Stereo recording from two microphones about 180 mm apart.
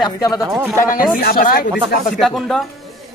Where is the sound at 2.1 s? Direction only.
Centre (ahead or behind).